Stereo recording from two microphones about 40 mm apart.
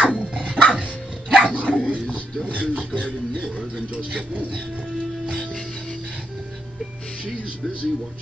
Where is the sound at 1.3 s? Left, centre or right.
Right.